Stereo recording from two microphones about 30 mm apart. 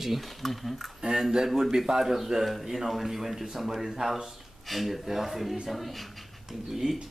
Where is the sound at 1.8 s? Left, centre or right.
Centre.